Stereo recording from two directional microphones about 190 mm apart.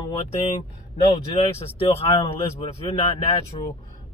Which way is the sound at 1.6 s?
30° left (ahead or behind).